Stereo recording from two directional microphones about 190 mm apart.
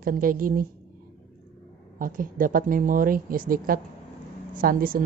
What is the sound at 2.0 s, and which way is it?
A woman's voice, 45° right (ahead or behind).